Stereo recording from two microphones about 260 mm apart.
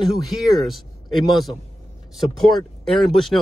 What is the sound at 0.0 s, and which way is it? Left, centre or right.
Speech, centre.